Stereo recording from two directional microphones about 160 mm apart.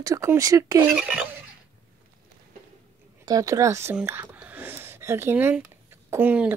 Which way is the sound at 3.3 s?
20° right (ahead or behind).